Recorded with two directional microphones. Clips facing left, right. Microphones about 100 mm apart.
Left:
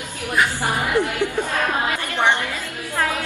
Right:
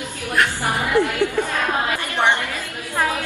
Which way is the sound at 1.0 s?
15° left (ahead or behind).